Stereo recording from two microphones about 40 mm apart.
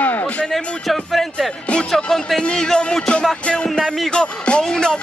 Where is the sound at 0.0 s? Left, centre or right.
Left.